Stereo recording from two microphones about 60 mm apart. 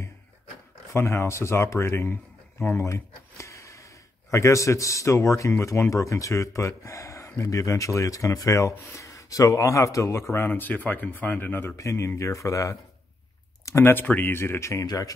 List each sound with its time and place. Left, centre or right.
0.9 s speech: left
3.3 s gasp: left
4.3 s speech: left
10.5 s speech: left
11.7 s speech: left
13.8 s speech: left